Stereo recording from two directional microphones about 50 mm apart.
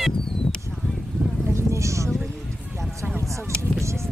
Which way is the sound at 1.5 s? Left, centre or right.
Right.